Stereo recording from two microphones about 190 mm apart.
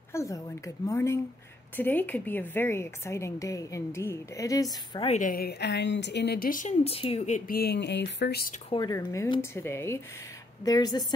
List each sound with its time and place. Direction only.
0.1 s a woman's voice: 15° left (ahead or behind)
4.9 s a woman's voice: 30° left (ahead or behind)
5.2 s a woman's voice: 50° left (ahead or behind)
6.8 s speech: 30° left (ahead or behind); by 8.5 s 60° left (ahead or behind)
8.6 s a woman's voice: 20° left (ahead or behind)